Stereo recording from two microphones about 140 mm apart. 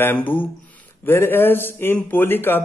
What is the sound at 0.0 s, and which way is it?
A man's voice, 15° left (ahead or behind).